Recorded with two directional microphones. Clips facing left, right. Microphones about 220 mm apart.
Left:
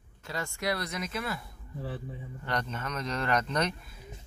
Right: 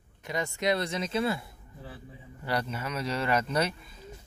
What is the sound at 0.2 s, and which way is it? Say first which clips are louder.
Speech: right 4 dB; 20° right (ahead or behind).